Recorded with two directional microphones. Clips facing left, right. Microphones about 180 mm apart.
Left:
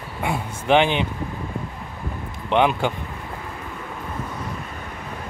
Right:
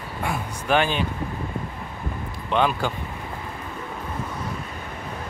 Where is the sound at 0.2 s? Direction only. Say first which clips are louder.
Left 3 dB; 20° left (ahead or behind).